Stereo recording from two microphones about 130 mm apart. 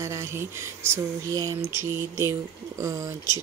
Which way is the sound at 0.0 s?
20° right (ahead or behind).